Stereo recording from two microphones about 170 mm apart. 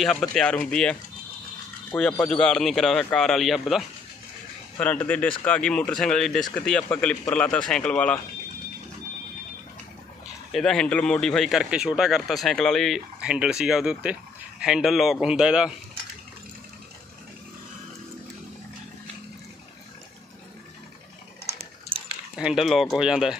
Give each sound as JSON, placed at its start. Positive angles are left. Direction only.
{"t": 0.0, "sound": "speech", "side_deg": 0}
{"t": 4.7, "sound": "speech", "side_deg": 10}
{"t": 10.5, "sound": "speech", "side_deg": 5}
{"t": 22.4, "sound": "speech", "side_deg": -5}